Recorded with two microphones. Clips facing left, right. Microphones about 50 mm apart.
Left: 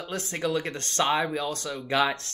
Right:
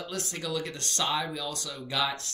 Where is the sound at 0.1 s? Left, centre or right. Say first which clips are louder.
Left 7 dB; left.